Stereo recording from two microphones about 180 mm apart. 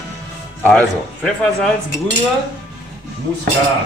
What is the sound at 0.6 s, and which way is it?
Speech, 5° left (ahead or behind).